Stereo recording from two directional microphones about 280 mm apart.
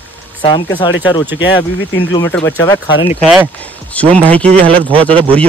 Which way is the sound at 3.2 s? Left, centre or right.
Centre.